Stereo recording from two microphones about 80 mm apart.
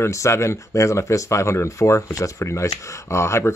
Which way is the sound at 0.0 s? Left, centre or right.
Left.